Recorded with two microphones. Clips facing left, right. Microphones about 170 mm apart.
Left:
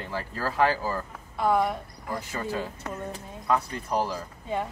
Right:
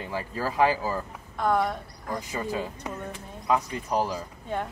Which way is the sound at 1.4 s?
5° left (ahead or behind).